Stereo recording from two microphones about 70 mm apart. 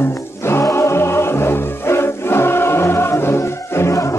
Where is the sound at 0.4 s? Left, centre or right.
Left.